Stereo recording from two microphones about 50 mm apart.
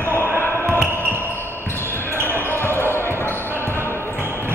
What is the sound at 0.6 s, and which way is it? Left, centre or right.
Basketball bounce, right.